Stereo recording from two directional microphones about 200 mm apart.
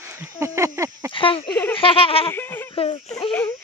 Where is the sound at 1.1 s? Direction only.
25° left (ahead or behind).